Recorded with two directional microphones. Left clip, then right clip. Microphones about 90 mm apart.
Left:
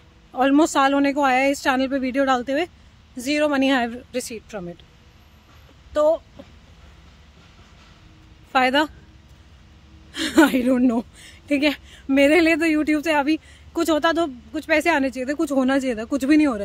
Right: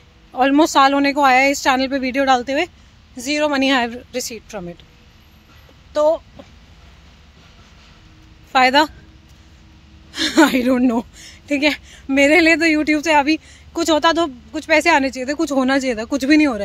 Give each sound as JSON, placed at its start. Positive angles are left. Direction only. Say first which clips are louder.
{"t": 0.3, "sound": "a woman's voice", "louder": "right 3 dB", "side_deg": 50}
{"t": 3.2, "sound": "a woman's voice", "louder": "right 2 dB", "side_deg": 90}
{"t": 3.5, "sound": "a woman's voice", "louder": "right 3 dB", "side_deg": 45}
{"t": 5.9, "sound": "a woman's voice", "louder": "right 3 dB", "side_deg": 50}
{"t": 8.5, "sound": "a woman's voice", "louder": "right 5 dB", "side_deg": 45}
{"t": 10.1, "sound": "a woman's voice", "louder": "right 3 dB", "side_deg": 45}
{"t": 13.7, "sound": "a woman's voice", "louder": "right 4 dB", "side_deg": 55}